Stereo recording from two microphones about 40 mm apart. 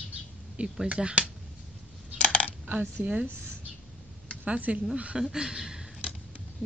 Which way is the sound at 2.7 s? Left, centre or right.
Right.